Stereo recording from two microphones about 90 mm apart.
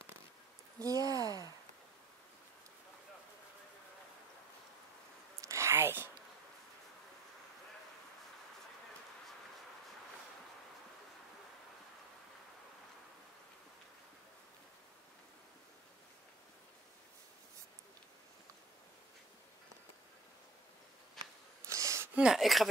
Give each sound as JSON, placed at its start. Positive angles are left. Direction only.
{"t": 0.7, "sound": "speech", "side_deg": -40}
{"t": 1.1, "sound": "a sound", "side_deg": -40}
{"t": 5.4, "sound": "whispering", "side_deg": -35}
{"t": 21.2, "sound": "a sound", "side_deg": 5}
{"t": 21.6, "sound": "gasp", "side_deg": -35}
{"t": 22.1, "sound": "speech", "side_deg": -10}